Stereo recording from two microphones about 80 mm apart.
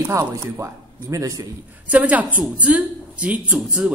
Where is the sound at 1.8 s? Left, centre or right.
Centre.